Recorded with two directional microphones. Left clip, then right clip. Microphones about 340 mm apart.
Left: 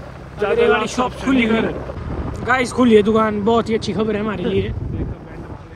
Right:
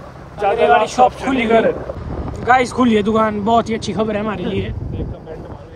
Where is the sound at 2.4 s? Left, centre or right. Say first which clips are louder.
Right 3 dB; centre.